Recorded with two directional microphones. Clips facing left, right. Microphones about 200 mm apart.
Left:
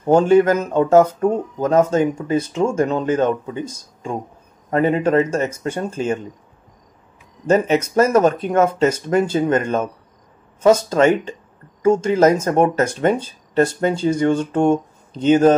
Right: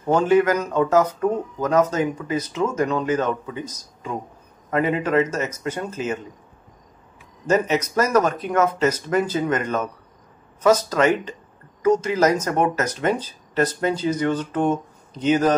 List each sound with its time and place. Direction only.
0.0 s speech: 30° left (ahead or behind)
7.4 s speech: 30° left (ahead or behind)